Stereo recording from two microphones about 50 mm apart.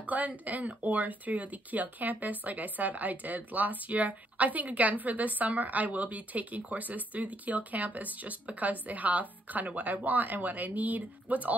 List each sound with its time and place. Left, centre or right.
0.0 s speech: right